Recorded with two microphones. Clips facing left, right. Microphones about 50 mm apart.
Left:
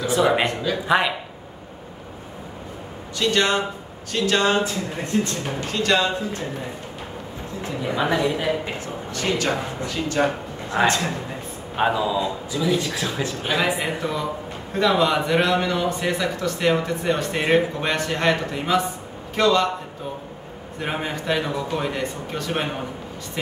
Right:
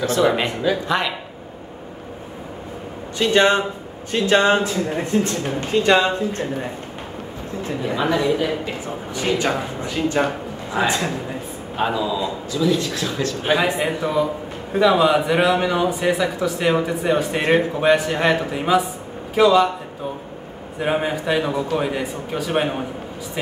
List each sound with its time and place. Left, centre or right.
0.0 s speech: centre
3.2 s speech: right
5.7 s speech: right
7.9 s speech: centre
8.8 s speech: centre
10.8 s speech: centre
13.4 s speech: centre
20.8 s speech: centre